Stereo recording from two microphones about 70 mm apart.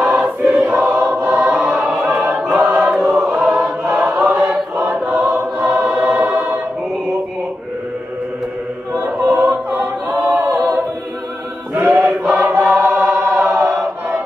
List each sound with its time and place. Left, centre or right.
0.0 s choir: centre
2.5 s choir: right
3.3 s choir: centre
9.3 s choir: centre
10.0 s a capella: right
11.9 s choir: right